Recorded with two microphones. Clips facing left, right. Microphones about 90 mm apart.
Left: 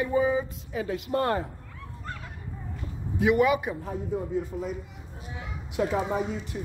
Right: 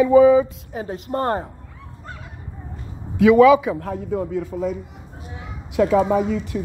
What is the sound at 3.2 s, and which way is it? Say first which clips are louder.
A woman's voice: right 10 dB; 90° right.